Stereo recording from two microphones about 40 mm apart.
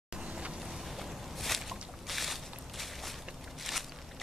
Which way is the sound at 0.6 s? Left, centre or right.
Centre.